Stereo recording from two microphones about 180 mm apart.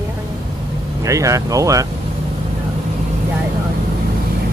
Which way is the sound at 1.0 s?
20° right (ahead or behind).